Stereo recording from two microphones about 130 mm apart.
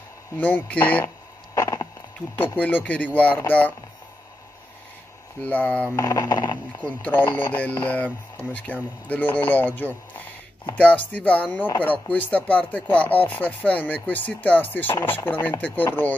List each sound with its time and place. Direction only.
0.4 s speech: 10° left (ahead or behind)
1.0 s a sound: 25° left (ahead or behind)
2.3 s speech: 15° left (ahead or behind)
5.4 s speech: 10° left (ahead or behind)
5.9 s speech: 30° left (ahead or behind)
6.8 s speech: 10° left (ahead or behind)
11.1 s speech: 10° left (ahead or behind)